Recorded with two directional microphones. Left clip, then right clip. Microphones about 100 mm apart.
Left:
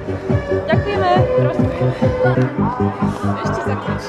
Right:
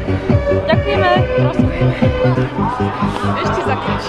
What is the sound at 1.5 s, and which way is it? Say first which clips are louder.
Speech: right 2 dB; 5° left (ahead or behind).